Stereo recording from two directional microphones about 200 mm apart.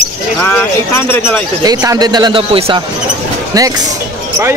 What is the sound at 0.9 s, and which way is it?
Speech, 10° left (ahead or behind).